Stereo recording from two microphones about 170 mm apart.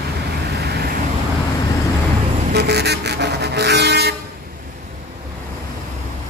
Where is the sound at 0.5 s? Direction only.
70° right (ahead or behind).